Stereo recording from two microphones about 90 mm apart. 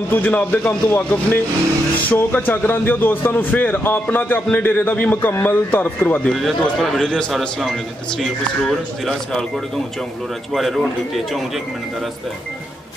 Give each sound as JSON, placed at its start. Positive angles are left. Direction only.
{"t": 0.1, "sound": "speech", "side_deg": 20}
{"t": 6.3, "sound": "a man's voice", "side_deg": 0}
{"t": 10.5, "sound": "a man's voice", "side_deg": 0}